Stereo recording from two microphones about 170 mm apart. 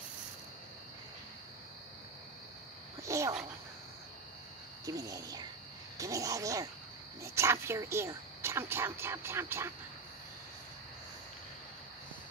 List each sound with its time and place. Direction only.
3.0 s speech: 15° right (ahead or behind)
4.8 s speech: 20° right (ahead or behind)